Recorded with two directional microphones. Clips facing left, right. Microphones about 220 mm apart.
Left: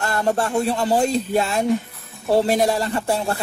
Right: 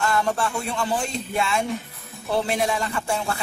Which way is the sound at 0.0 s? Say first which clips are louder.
Left 2 dB; 40° left (ahead or behind).